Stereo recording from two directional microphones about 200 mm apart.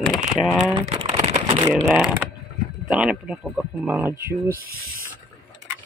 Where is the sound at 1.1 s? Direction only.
35° right (ahead or behind).